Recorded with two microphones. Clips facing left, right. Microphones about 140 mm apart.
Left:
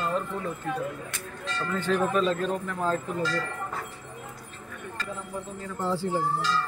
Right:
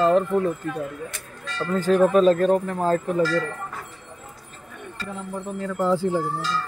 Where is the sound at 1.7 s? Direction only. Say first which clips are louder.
Right 8 dB; 45° right (ahead or behind).